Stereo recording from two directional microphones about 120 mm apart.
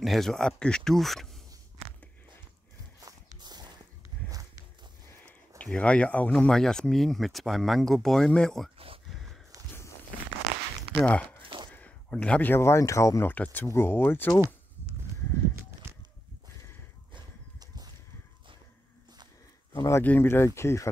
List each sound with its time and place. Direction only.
0.0 s speech: centre (ahead or behind)
3.3 s a sound: 35° right (ahead or behind)
5.6 s speech: 10° left (ahead or behind)
8.7 s a sound: 50° right (ahead or behind)
11.0 s speech: 10° left (ahead or behind)
11.4 s a sound: 45° right (ahead or behind)
11.7 s speech: 10° left (ahead or behind)
13.3 s speech: 15° left (ahead or behind)
17.1 s horse: 35° right (ahead or behind)
19.7 s speech: 25° left (ahead or behind)